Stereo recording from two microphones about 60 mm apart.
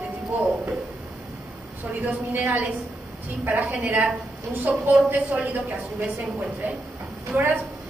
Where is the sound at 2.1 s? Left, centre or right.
Right.